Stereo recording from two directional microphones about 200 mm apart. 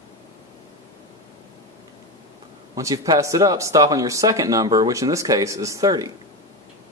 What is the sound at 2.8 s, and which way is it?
Speech, 15° right (ahead or behind).